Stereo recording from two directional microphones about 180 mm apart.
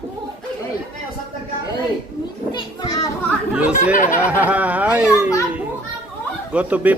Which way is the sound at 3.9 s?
45° left (ahead or behind).